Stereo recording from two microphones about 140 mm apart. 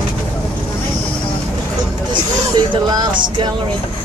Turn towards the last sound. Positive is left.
turn(degrees=-35)  # may be behind; listen again after turning